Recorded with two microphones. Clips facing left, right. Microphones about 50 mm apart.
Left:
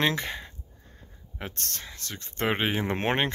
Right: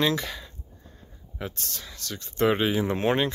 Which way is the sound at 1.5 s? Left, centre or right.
Left.